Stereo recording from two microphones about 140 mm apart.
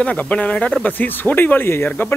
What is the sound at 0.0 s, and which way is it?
Speech, 10° left (ahead or behind).